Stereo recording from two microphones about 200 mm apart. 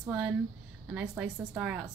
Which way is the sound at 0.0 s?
10° right (ahead or behind).